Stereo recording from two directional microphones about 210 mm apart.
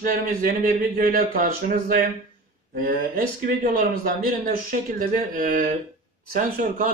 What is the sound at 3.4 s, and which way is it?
A man's voice, 45° right (ahead or behind).